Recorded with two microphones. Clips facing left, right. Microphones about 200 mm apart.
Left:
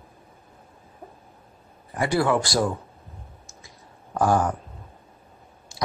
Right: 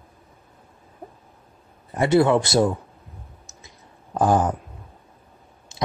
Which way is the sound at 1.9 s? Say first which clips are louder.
Right 5 dB; 25° right (ahead or behind).